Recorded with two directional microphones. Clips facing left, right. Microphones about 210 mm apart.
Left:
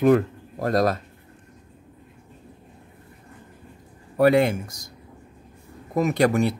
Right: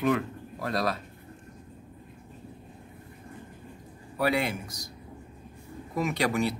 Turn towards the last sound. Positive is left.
turn(degrees=50)  # may be behind; listen again after turning